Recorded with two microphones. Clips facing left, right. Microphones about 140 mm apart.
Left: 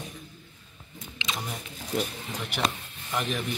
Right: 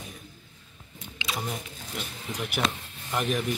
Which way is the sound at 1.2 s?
5° right (ahead or behind).